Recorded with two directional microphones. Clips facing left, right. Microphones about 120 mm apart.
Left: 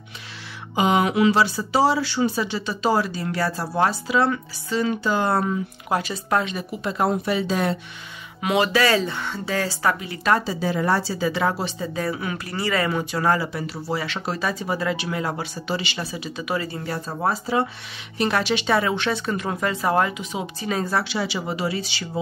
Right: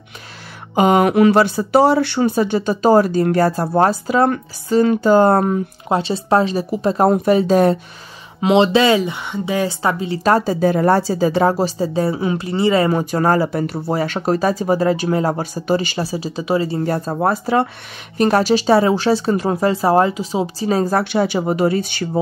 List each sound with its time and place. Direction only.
0.7 s speech: 50° right (ahead or behind)
5.9 s speech: 25° right (ahead or behind); by 7.7 s 45° right (ahead or behind)
8.4 s speech: 25° right (ahead or behind)
12.9 s speech: 40° right (ahead or behind)
16.8 s speech: 50° right (ahead or behind)
18.1 s speech: 45° right (ahead or behind)